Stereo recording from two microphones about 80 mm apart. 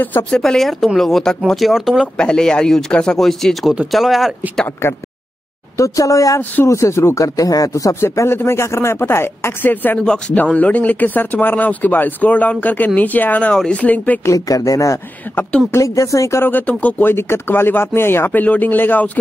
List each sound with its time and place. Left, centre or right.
0.3 s speech: centre
2.1 s speech: centre
5.8 s speech: left; by 14.2 s centre
14.2 s speech: left
16.4 s speech: left